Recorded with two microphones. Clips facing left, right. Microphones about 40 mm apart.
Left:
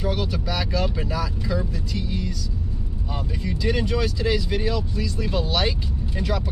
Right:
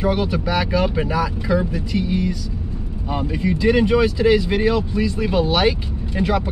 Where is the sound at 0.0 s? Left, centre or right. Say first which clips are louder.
Right 6 dB; right.